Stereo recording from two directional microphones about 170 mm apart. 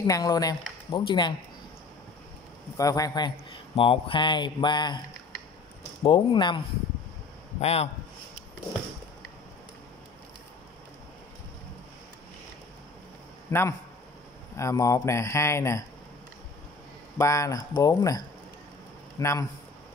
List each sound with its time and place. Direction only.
0.0 s speech: 20° left (ahead or behind)
2.8 s speech: 20° left (ahead or behind)
6.0 s speech: 25° left (ahead or behind)
7.6 s a man's voice: 35° left (ahead or behind)
13.5 s a man's voice: 15° left (ahead or behind)
17.2 s speech: 20° left (ahead or behind)